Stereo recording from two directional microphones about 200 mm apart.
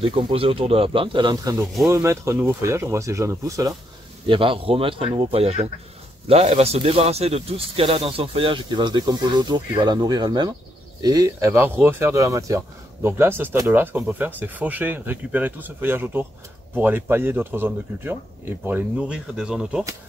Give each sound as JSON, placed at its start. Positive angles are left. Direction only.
{"t": 0.0, "sound": "speech", "side_deg": -25}
{"t": 4.3, "sound": "speech", "side_deg": -25}